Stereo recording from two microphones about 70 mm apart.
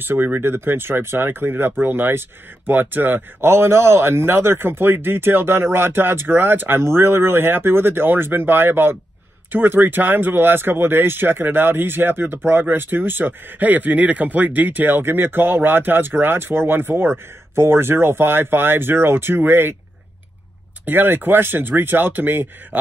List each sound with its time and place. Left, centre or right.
0.0 s speech: right
20.8 s speech: right